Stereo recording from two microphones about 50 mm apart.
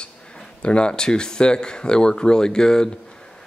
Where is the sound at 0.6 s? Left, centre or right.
Left.